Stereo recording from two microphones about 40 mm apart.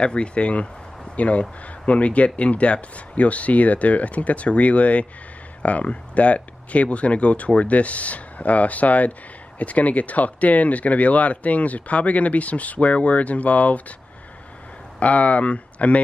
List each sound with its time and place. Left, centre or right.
0.0 s speech: left
15.0 s speech: left